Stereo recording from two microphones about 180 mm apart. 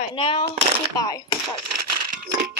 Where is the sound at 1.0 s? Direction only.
20° left (ahead or behind).